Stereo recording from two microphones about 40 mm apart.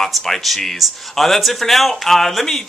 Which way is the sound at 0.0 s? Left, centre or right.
Centre.